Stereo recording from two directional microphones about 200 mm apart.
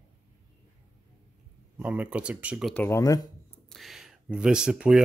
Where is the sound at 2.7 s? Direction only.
10° left (ahead or behind).